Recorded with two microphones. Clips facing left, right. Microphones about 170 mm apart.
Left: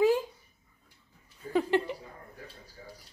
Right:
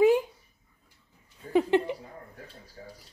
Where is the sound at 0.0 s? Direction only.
20° right (ahead or behind).